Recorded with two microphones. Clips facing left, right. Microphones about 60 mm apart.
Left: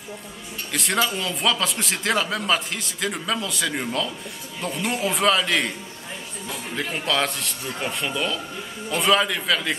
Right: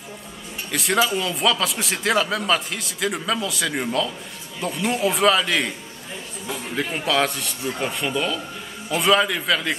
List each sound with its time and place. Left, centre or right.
0.7 s speech: centre